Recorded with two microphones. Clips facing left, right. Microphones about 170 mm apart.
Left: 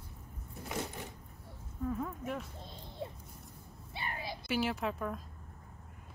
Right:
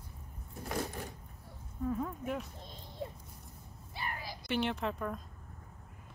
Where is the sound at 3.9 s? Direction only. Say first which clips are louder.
Left 1 dB; 25° left (ahead or behind).